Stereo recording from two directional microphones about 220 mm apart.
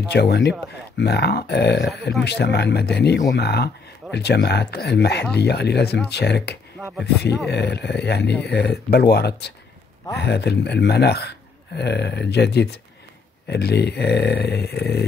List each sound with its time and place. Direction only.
0.1 s speech: 50° left (ahead or behind)